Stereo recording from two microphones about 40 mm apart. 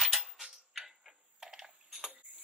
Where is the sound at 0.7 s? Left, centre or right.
Centre.